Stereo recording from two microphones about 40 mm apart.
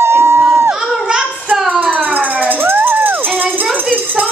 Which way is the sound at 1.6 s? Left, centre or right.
Right.